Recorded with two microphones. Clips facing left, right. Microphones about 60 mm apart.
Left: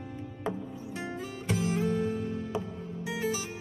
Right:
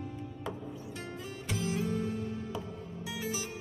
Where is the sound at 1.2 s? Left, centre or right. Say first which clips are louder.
Left 5 dB; left.